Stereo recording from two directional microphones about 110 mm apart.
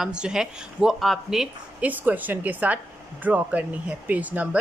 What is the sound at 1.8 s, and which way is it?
A woman's voice, 15° right (ahead or behind).